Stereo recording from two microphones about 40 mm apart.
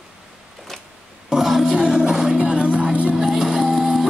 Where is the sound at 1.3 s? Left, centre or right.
Centre.